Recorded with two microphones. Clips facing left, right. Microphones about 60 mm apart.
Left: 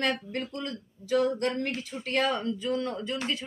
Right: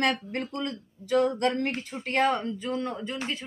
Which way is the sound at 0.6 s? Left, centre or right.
Right.